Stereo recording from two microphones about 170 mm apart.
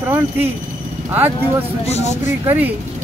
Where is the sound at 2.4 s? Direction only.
10° right (ahead or behind).